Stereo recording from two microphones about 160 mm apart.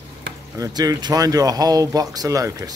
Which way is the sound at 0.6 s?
25° right (ahead or behind).